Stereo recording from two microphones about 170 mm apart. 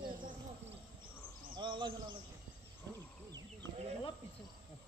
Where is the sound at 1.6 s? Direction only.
30° right (ahead or behind).